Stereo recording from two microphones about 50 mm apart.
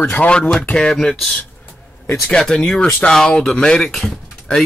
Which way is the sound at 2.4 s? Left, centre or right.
Centre.